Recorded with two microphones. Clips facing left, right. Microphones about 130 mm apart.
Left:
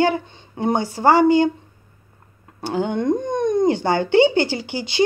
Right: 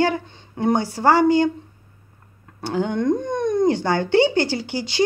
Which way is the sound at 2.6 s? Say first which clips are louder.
Even; 5° left (ahead or behind).